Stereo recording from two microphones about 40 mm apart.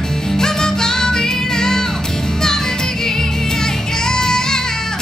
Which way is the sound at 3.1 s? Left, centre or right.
Centre.